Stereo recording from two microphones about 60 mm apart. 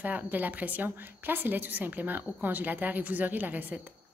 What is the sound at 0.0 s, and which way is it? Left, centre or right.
A woman's voice, right.